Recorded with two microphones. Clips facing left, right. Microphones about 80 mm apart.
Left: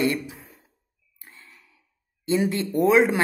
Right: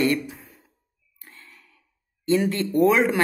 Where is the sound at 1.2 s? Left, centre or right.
Centre.